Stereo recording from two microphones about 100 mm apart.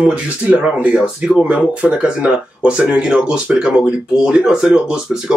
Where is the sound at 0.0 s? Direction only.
15° right (ahead or behind).